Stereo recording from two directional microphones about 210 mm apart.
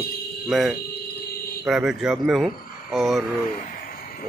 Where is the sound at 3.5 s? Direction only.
40° left (ahead or behind).